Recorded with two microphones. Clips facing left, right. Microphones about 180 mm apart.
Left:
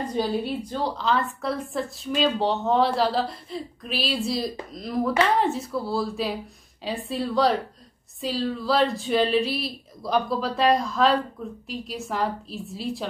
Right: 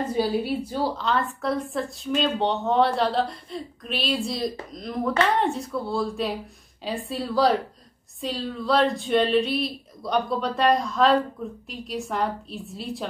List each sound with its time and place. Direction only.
0.0 s a woman's voice: 5° right (ahead or behind)